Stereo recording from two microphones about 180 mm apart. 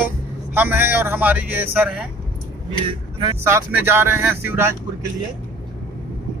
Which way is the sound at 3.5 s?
10° right (ahead or behind).